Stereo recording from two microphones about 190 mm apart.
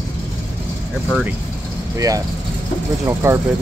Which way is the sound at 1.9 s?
15° right (ahead or behind).